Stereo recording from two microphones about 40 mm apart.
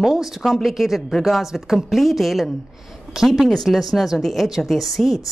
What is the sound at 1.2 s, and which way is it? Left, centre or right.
A woman's voice, centre.